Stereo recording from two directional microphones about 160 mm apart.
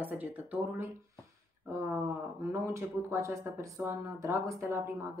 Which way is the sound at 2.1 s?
20° right (ahead or behind).